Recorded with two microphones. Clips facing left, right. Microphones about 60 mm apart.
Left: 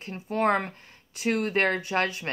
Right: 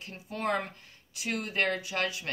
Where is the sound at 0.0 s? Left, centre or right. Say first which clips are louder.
Left 8 dB; left.